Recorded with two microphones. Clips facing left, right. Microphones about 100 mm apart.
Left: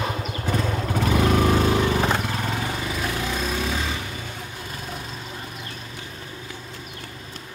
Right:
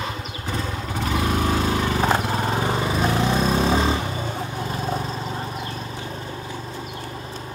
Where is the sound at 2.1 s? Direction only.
35° right (ahead or behind).